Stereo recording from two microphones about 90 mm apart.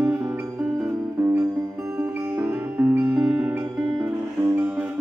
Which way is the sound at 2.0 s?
15° right (ahead or behind).